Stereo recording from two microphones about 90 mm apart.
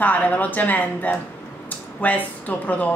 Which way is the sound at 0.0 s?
20° left (ahead or behind).